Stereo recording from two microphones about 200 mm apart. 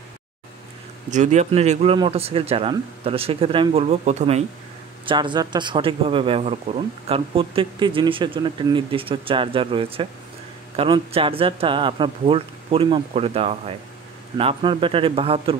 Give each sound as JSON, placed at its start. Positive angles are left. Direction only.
{"t": 1.1, "sound": "speech", "side_deg": -35}
{"t": 5.0, "sound": "speech", "side_deg": -25}